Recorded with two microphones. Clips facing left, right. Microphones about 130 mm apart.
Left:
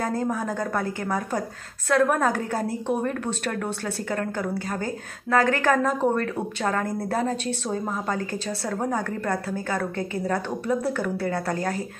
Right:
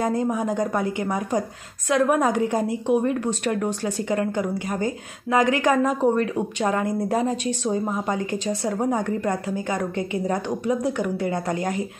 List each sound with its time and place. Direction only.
0.0 s a woman's voice: 15° right (ahead or behind)